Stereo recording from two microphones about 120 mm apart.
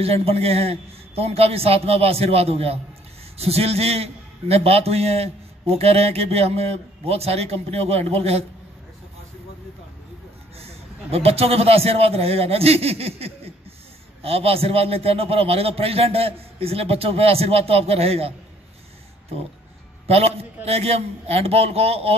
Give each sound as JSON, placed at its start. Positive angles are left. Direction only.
{"t": 0.0, "sound": "a man's voice", "side_deg": -55}
{"t": 10.6, "sound": "a man's voice", "side_deg": -55}
{"t": 20.1, "sound": "a man's voice", "side_deg": -60}